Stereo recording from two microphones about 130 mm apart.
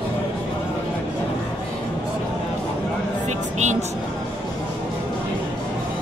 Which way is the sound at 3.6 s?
65° right (ahead or behind).